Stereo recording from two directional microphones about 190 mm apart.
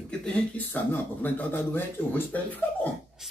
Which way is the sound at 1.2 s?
10° left (ahead or behind).